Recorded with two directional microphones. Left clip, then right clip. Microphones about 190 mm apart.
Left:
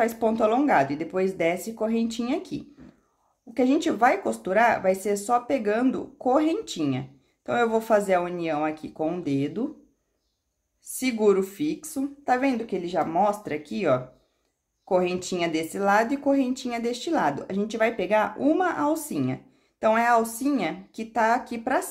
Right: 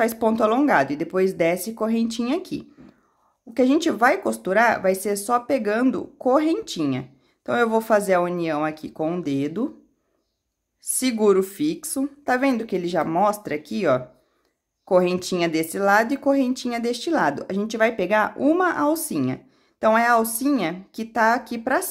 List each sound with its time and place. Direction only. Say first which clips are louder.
0.0 s speech: right 3 dB; 25° right (ahead or behind)
11.0 s speech: right 3 dB; 25° right (ahead or behind)